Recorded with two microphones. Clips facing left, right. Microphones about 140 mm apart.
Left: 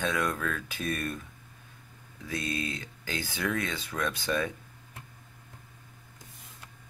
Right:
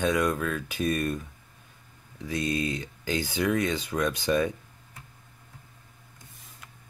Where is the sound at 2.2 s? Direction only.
20° right (ahead or behind).